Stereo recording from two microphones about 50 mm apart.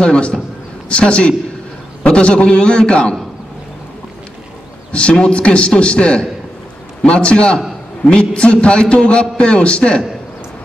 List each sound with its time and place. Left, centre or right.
0.0 s a man's voice: centre
5.3 s a man's voice: left